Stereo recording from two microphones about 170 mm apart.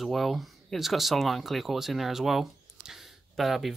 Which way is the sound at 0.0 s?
Centre (ahead or behind).